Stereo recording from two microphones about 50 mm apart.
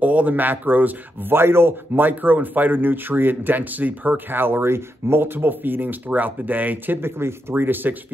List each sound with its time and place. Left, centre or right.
0.0 s speech: right
1.3 s speech: right
7.0 s speech: right